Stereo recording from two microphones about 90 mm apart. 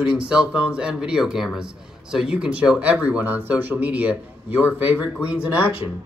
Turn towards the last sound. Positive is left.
turn(degrees=-15)  # may be behind; listen again after turning